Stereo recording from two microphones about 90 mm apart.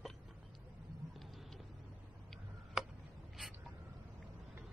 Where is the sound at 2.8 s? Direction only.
5° right (ahead or behind).